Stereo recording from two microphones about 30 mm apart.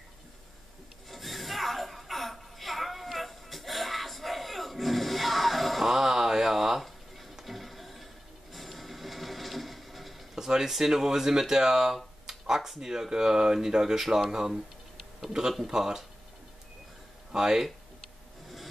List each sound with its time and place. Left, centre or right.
1.1 s chuckle: centre
5.9 s a sound: centre
6.8 s a sound: centre
7.4 s music: centre
8.5 s printer: centre
10.3 s a sound: centre
10.7 s speech: centre
15.6 s speech: centre
17.4 s speech: centre